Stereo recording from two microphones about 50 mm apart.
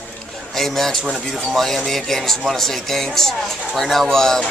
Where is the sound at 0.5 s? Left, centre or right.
Centre.